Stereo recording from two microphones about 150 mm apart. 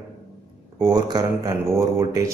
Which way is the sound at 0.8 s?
25° right (ahead or behind).